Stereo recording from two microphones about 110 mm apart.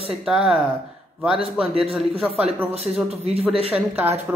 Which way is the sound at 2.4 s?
70° right (ahead or behind).